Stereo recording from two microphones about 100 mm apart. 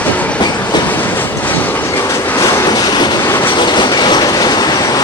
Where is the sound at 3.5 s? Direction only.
50° left (ahead or behind).